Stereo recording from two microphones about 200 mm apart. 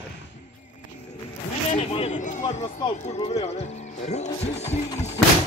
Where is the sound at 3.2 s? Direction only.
35° left (ahead or behind).